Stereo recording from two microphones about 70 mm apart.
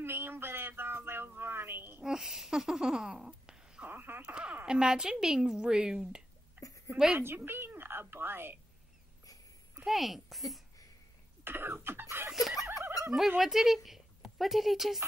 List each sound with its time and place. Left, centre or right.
0.0 s a sound: right
2.0 s a sound: centre
3.9 s wail: right
4.2 s a woman's voice: centre
6.6 s a sound: right
7.2 s a woman's voice: right
9.8 s speech: centre
11.4 s chicken: right
12.3 s speech: centre
12.6 s turkey: right
13.4 s speech: centre